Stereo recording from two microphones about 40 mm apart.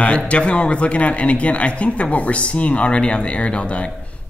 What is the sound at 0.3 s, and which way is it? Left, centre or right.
Speech, left.